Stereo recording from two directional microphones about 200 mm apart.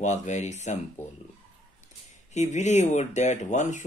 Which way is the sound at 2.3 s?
35° left (ahead or behind).